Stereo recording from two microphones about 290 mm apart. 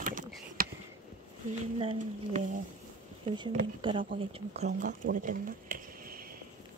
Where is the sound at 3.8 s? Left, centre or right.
Centre.